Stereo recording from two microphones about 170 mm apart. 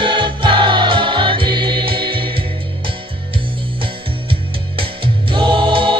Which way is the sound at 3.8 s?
30° right (ahead or behind).